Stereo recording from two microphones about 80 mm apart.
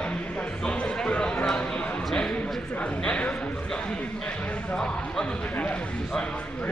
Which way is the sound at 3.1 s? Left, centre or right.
Centre.